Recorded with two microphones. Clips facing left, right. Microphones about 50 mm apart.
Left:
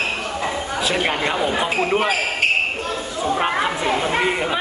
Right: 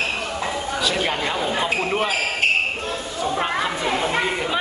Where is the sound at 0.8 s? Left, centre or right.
Left.